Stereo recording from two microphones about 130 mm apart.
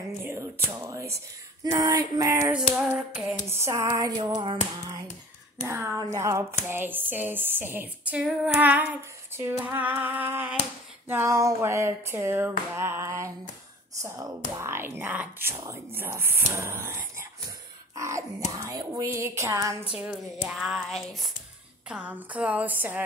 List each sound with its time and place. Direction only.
0.2 s a sound: 20° right (ahead or behind)
0.7 s speech: 25° right (ahead or behind)
2.7 s speech: 5° right (ahead or behind)
3.4 s speech: 20° right (ahead or behind)
4.2 s speech: 35° right (ahead or behind)
5.6 s speech: 25° right (ahead or behind)
6.7 s female singing: 15° right (ahead or behind)
11.1 s speech: 20° right (ahead or behind)
20.1 s speech: centre (ahead or behind)
21.8 s female singing: 10° right (ahead or behind)